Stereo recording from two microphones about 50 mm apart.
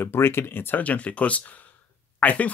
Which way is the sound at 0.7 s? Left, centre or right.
Left.